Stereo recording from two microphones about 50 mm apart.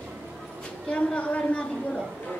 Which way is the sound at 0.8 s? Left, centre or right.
Left.